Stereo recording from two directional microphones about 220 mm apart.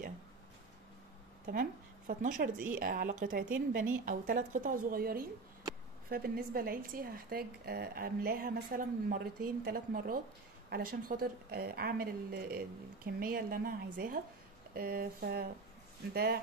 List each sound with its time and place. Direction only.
1.4 s a woman's voice: 40° right (ahead or behind)